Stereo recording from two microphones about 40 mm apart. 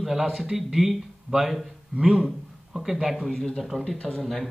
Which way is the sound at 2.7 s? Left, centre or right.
Centre.